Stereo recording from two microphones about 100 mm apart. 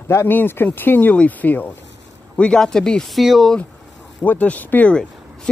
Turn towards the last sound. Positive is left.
turn(degrees=15)  # may be behind; listen again after turning